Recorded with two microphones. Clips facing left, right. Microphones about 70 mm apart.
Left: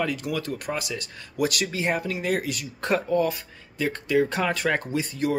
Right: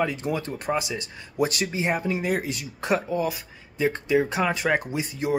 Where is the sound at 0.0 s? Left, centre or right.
Right.